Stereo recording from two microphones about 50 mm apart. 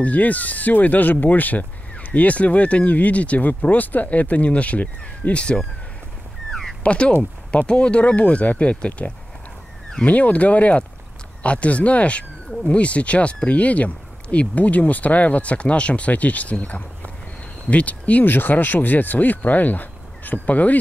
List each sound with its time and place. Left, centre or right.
0.0 s speech: left
6.5 s a sound: centre
6.8 s speech: left